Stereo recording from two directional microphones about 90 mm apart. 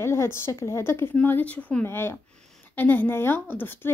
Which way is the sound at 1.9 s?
25° left (ahead or behind).